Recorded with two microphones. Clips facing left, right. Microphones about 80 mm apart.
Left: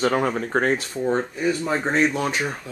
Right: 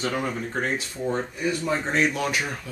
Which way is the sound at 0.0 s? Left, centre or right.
Left.